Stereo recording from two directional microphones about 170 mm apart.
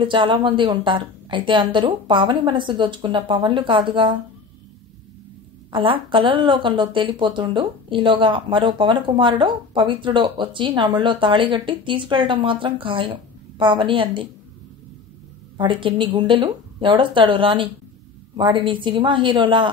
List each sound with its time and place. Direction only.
0.0 s speech: 30° right (ahead or behind)
5.7 s speech: 30° right (ahead or behind)
15.5 s speech: 30° right (ahead or behind)